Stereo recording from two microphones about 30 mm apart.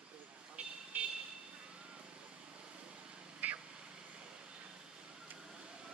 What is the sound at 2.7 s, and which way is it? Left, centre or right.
Vehicle, right.